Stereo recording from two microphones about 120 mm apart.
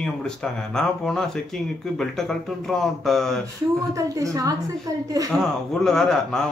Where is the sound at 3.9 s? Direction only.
30° right (ahead or behind).